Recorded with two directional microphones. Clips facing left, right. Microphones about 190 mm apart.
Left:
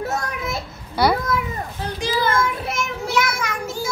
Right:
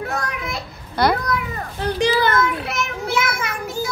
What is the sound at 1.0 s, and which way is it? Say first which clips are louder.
Speech: even; 10° left (ahead or behind).